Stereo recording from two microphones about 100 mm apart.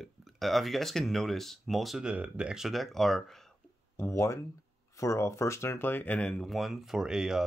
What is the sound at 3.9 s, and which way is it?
Speech, 25° left (ahead or behind).